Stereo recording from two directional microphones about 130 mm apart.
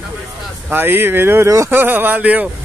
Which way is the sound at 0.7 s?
15° right (ahead or behind).